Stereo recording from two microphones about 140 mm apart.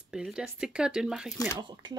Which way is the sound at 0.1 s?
5° right (ahead or behind).